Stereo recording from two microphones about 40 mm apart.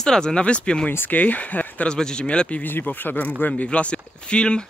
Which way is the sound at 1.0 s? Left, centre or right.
Left.